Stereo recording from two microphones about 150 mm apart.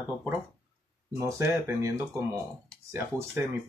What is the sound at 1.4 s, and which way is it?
Speech, 15° right (ahead or behind).